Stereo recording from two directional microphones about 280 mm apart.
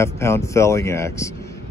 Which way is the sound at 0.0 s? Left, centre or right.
Centre.